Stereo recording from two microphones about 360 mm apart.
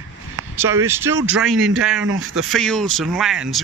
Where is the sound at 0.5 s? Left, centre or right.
Centre.